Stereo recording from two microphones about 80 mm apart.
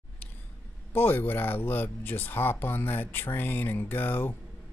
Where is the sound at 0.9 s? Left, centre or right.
Left.